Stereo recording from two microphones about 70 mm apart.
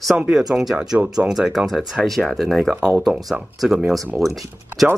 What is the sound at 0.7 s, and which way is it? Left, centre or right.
Speech, centre.